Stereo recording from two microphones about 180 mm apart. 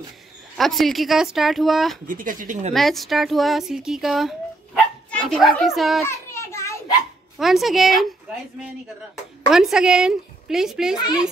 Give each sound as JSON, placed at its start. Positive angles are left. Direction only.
{"t": 0.6, "sound": "speech", "side_deg": 0}
{"t": 2.0, "sound": "speech", "side_deg": -50}
{"t": 2.7, "sound": "speech", "side_deg": 0}
{"t": 6.0, "sound": "a sound", "side_deg": 15}
{"t": 7.3, "sound": "speech", "side_deg": 0}
{"t": 9.5, "sound": "speech", "side_deg": -5}